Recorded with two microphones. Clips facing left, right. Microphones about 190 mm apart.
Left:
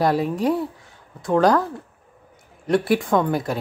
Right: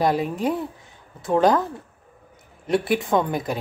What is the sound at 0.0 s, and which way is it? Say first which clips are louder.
Speech: left 2 dB; centre (ahead or behind).